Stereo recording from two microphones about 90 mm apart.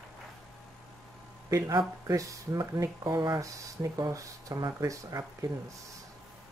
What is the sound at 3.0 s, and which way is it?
Speech, 55° right (ahead or behind).